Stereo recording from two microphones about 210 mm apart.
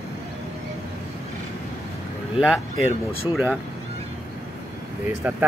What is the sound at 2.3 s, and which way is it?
Speech, 5° right (ahead or behind).